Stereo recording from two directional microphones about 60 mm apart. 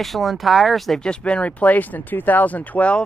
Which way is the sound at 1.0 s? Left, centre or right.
Centre.